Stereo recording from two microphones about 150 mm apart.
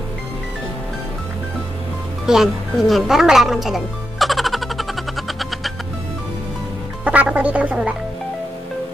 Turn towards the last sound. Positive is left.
turn(degrees=-10)  # may be behind; listen again after turning